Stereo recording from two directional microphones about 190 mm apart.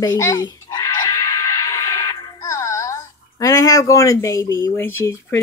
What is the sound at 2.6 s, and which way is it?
Speech, 15° left (ahead or behind).